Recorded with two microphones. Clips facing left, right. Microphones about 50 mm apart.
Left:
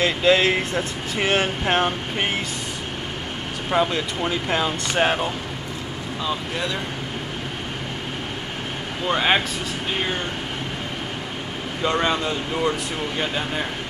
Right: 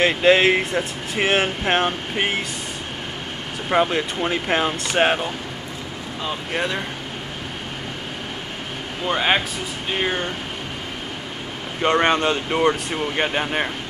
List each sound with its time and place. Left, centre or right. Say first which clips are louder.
0.0 s speech: right 2 dB; right
1.6 s speech: right 1 dB; centre
3.7 s speech: right 2 dB; right
6.2 s speech: right 2 dB; right
9.0 s speech: even; centre
11.8 s speech: right 4 dB; right
12.2 s speech: right 4 dB; right